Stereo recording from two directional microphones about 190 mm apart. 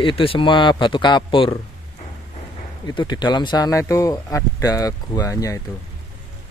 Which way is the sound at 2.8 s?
25° left (ahead or behind).